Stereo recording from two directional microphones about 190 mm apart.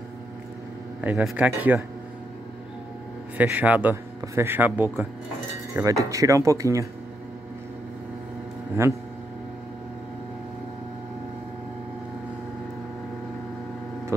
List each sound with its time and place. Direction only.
1.0 s a man's voice: 10° right (ahead or behind)
3.3 s a man's voice: 10° right (ahead or behind)
8.8 s a man's voice: 15° right (ahead or behind)